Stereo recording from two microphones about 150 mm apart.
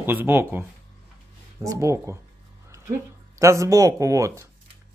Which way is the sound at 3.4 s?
20° right (ahead or behind).